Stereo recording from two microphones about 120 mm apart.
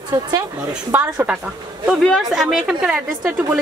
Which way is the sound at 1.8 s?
Centre (ahead or behind).